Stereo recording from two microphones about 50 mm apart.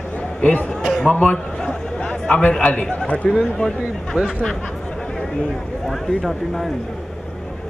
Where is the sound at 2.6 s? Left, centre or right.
Left.